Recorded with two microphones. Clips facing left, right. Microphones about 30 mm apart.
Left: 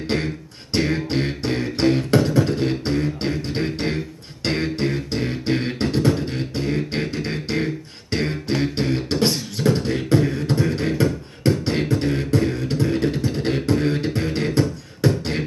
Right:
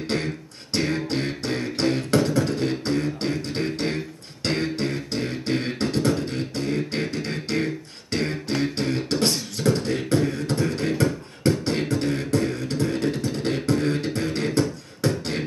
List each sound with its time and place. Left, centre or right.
0.1 s beatboxing: centre